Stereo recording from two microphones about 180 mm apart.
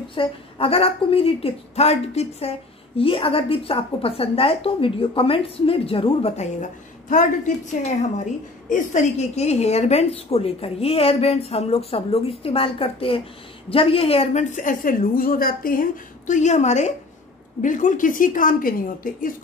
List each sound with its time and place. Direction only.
0.1 s a woman's voice: 30° left (ahead or behind); by 19.3 s 50° left (ahead or behind)